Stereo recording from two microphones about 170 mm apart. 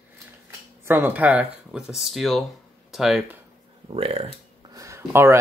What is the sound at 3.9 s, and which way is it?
Speech, 35° right (ahead or behind).